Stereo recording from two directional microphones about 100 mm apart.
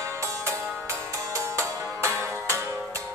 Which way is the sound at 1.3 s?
30° right (ahead or behind).